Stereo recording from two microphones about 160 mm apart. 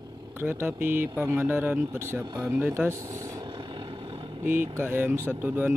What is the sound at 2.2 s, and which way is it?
Vehicle, 20° right (ahead or behind).